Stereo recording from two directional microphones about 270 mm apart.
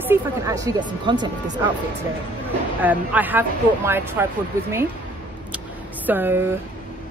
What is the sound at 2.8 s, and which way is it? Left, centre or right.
Speech, centre.